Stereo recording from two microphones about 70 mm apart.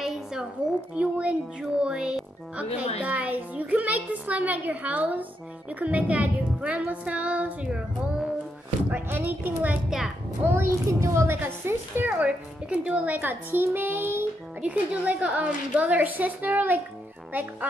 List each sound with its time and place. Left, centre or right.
0.0 s a sound: centre
0.9 s speech: centre
8.9 s speech: right
9.8 s a child's voice: centre
10.4 s speech: right
11.3 s speech: right
14.6 s speech: centre